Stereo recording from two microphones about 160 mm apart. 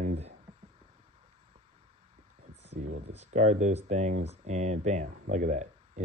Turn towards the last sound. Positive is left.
turn(degrees=-50)  # may be behind; listen again after turning